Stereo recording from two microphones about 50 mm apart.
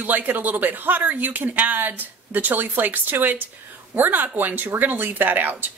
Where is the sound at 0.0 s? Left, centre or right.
Right.